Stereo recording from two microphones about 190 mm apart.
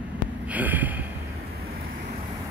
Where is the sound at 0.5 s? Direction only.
10° right (ahead or behind).